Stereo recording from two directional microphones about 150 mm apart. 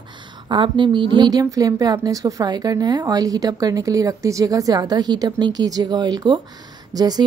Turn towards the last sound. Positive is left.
turn(degrees=-25)  # may be behind; listen again after turning